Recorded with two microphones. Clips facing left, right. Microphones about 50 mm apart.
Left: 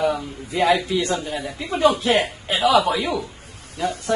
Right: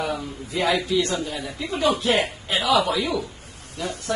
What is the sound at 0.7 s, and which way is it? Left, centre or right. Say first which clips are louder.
Speech: right 1 dB; left.